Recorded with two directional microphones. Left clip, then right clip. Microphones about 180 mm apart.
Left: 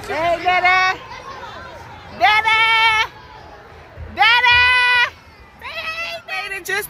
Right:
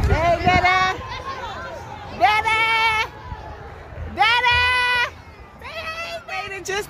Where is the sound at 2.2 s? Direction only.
5° right (ahead or behind).